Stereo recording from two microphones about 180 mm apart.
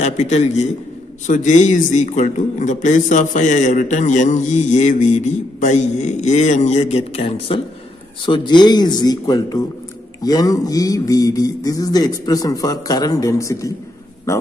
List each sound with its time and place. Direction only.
0.0 s a man's voice: 40° left (ahead or behind); by 13.7 s 15° left (ahead or behind)